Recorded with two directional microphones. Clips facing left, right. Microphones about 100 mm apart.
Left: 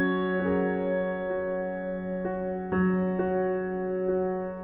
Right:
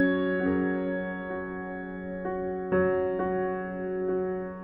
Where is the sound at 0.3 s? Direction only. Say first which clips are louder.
Even; 15° right (ahead or behind).